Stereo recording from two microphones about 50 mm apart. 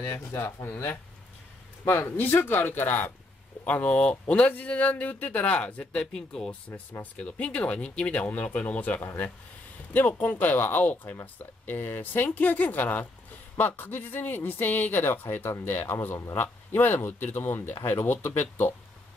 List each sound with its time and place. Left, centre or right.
0.1 s speech: left
1.9 s speech: left
6.1 s speech: centre
6.7 s speech: left; by 8.1 s centre
8.1 s speech: left
15.6 s speech: left
16.2 s a man's voice: left
16.7 s speech: left